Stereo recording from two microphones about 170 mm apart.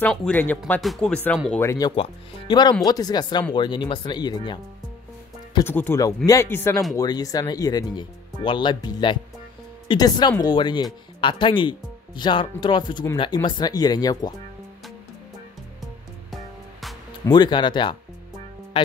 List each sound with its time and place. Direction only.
0.0 s speech: 5° left (ahead or behind)
1.6 s speech: 20° left (ahead or behind)
5.6 s speech: 15° left (ahead or behind)
17.3 s speech: 25° left (ahead or behind)